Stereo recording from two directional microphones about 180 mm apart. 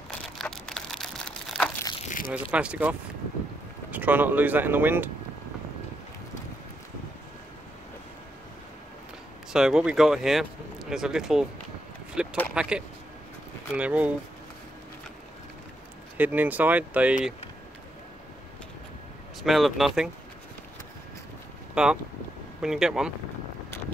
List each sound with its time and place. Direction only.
0.4 s a sound: 5° left (ahead or behind)
2.0 s crumpling: 45° left (ahead or behind)
2.5 s speech: 5° right (ahead or behind)
9.5 s speech: 5° right (ahead or behind)
16.2 s speech: 10° right (ahead or behind)
19.4 s speech: centre (ahead or behind)
21.8 s speech: 5° right (ahead or behind)